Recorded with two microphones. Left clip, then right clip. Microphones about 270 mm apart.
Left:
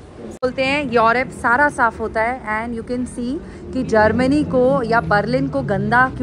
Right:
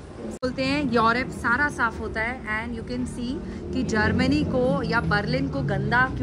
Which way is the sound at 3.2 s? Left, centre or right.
Centre.